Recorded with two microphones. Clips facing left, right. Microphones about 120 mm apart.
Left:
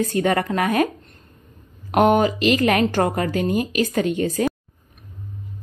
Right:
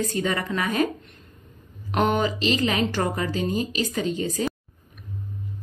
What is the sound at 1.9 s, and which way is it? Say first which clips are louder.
Speech: left 6 dB; 50° left (ahead or behind).